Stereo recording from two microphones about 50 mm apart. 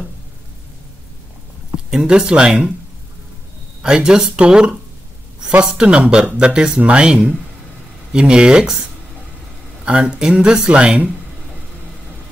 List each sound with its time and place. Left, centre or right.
1.9 s speech: centre
3.8 s speech: centre
9.8 s speech: right